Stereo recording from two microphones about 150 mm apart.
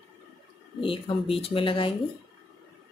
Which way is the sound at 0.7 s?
35° left (ahead or behind).